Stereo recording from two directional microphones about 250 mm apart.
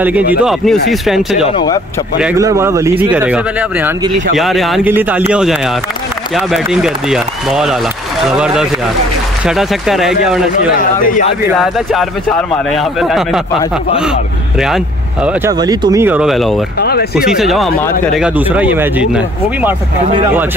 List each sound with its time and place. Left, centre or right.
0.3 s speech: centre
1.5 s speech: centre
2.1 s speech: centre
15.2 s speech: centre
16.8 s speech: left
17.3 s speech: centre